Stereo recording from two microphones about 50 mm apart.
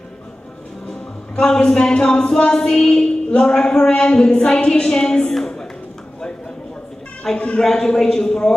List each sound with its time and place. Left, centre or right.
1.3 s speech: centre
7.3 s a man's voice: left
7.6 s speech: centre